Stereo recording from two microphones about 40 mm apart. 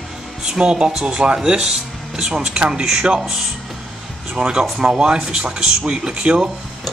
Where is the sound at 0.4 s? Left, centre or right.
Centre.